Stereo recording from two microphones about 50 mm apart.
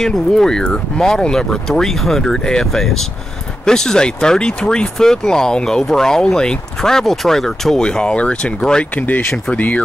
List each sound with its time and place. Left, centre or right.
0.0 s speech: centre
8.9 s speech: left